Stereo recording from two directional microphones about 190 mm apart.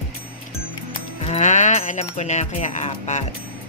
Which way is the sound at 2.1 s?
40° left (ahead or behind).